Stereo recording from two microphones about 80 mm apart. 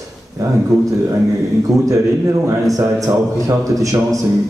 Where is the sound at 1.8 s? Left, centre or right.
Right.